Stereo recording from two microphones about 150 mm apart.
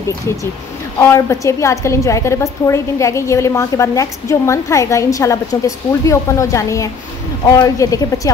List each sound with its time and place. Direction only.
1.0 s a woman's voice: 20° left (ahead or behind)